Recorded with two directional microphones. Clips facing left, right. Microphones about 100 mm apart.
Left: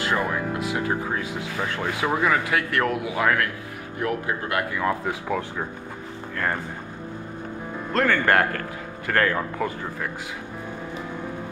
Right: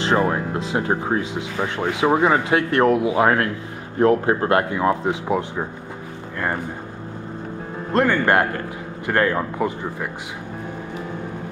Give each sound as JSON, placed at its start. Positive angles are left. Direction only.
{"t": 0.0, "sound": "speech", "side_deg": -25}
{"t": 7.9, "sound": "speech", "side_deg": -20}